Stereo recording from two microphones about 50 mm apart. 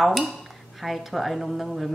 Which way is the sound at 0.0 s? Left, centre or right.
Centre.